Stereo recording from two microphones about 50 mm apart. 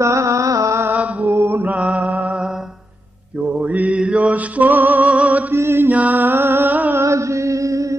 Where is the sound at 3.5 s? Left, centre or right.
Right.